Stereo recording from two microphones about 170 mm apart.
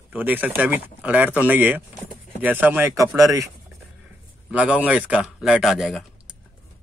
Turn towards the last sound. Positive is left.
turn(degrees=0)  # may be behind; listen again after turning